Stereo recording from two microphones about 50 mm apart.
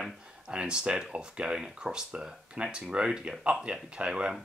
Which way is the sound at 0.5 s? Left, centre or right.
Right.